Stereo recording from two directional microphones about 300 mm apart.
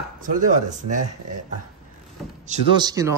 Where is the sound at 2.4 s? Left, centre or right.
Centre.